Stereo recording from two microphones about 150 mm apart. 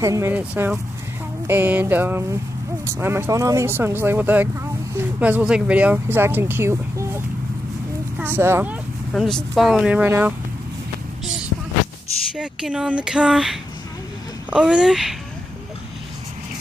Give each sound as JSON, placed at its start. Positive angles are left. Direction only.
{"t": 0.0, "sound": "speech", "side_deg": -20}
{"t": 9.1, "sound": "speech", "side_deg": 0}
{"t": 12.4, "sound": "speech", "side_deg": -5}